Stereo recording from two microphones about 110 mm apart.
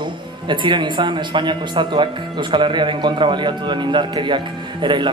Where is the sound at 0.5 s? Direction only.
45° right (ahead or behind).